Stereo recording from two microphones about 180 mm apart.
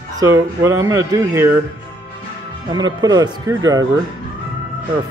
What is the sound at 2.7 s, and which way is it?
Speech, 20° right (ahead or behind).